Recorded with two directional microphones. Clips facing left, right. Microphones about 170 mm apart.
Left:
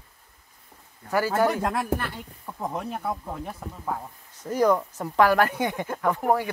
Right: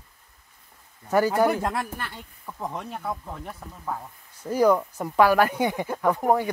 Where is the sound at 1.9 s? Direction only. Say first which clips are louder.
Left 8 dB; 70° left (ahead or behind).